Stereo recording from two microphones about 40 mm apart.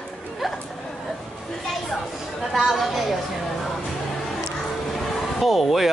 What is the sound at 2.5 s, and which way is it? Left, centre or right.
Speech, centre.